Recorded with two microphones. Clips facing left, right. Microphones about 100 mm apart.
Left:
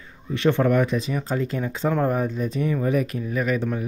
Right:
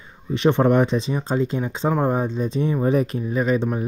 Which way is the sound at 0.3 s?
20° right (ahead or behind).